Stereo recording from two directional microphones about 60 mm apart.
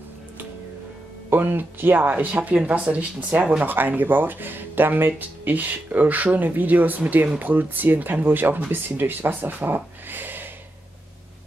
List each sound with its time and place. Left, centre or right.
1.3 s speech: right